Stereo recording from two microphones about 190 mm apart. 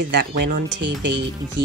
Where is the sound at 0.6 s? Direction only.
70° right (ahead or behind).